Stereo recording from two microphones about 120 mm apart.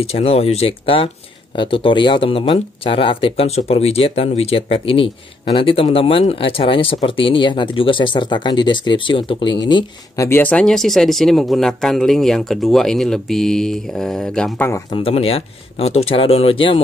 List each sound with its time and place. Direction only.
0.0 s speech: 55° left (ahead or behind); by 9.8 s 40° left (ahead or behind)
10.1 s speech: 25° left (ahead or behind)
10.4 s a man's voice: 10° left (ahead or behind)
14.9 s speech: 50° left (ahead or behind)